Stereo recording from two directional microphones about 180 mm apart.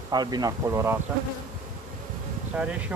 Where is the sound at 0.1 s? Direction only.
20° right (ahead or behind).